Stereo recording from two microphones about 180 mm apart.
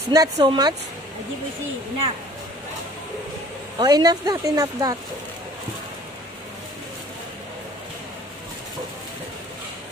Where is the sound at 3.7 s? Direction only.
20° right (ahead or behind).